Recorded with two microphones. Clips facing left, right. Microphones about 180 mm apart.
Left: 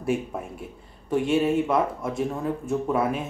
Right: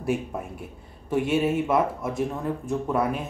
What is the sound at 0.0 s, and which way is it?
Speech, centre (ahead or behind).